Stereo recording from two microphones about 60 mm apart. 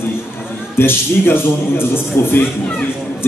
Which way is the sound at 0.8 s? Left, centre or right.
Left.